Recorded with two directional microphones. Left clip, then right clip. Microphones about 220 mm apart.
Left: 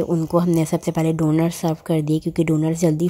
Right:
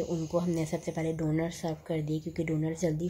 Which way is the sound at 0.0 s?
35° left (ahead or behind).